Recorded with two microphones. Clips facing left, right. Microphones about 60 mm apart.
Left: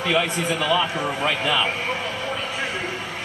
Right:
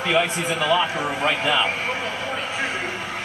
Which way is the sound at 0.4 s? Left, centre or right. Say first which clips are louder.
Even; centre.